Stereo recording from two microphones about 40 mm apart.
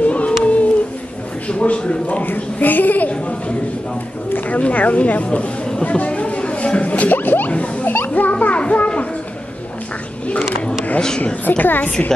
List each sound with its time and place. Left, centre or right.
0.0 s a sound: left
1.5 s speech: left
2.2 s a child's voice: left
3.1 s speech: left
4.3 s a child's voice: left
4.6 s speech: left
5.9 s a sound: left
7.2 s a sound: left
7.5 s music: left
7.8 s children playing: left
11.0 s speech: left
11.4 s a child's voice: left